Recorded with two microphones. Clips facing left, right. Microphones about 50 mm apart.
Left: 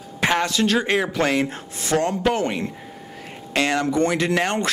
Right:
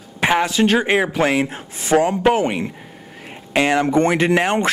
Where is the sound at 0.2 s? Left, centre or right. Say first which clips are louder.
Right 4 dB; centre.